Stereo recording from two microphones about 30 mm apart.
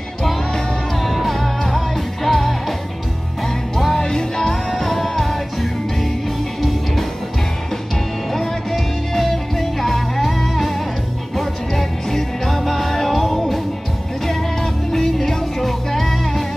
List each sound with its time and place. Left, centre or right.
1.0 s music: centre
4.0 s music: left
4.7 s music: centre
8.3 s music: centre